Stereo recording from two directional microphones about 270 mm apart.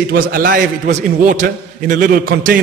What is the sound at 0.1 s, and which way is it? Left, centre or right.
A man's voice, right.